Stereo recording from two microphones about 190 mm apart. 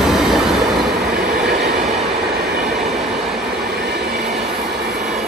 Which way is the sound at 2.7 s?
Centre (ahead or behind).